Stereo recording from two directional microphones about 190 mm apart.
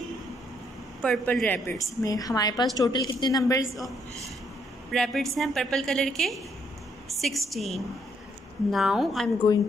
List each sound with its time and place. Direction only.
1.0 s a woman's voice: 5° left (ahead or behind)
4.9 s a woman's voice: centre (ahead or behind)